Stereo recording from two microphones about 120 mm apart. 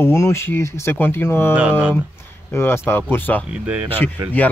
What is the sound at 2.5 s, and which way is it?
Speech, 20° left (ahead or behind).